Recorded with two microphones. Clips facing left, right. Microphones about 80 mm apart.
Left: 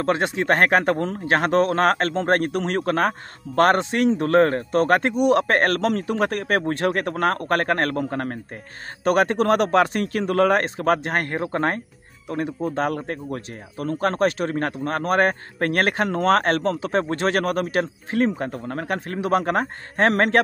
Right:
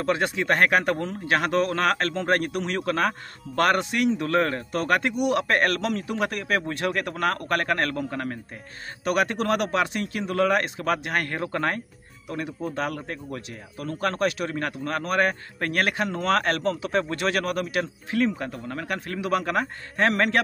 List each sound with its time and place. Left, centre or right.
0.0 s speech: left